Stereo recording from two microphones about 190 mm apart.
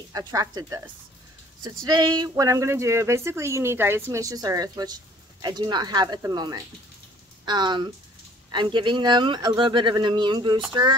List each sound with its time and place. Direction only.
0.1 s speech: 20° right (ahead or behind)